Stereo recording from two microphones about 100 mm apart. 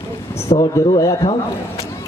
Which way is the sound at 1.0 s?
35° left (ahead or behind).